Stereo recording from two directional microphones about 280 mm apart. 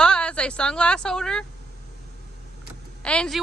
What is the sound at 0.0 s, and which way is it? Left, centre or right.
A woman's voice, centre.